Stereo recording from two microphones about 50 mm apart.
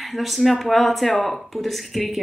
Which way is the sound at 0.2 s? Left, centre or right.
Centre.